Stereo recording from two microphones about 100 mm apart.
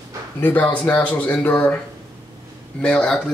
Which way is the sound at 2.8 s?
10° left (ahead or behind).